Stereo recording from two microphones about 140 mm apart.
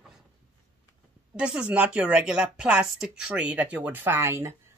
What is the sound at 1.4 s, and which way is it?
Speech, 5° right (ahead or behind).